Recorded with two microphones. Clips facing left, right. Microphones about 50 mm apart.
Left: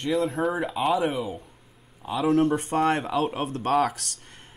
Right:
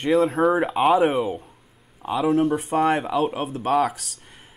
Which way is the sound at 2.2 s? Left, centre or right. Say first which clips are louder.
Right 1 dB; centre.